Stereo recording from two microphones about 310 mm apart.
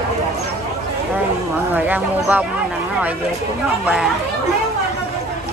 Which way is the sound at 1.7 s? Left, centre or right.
Centre.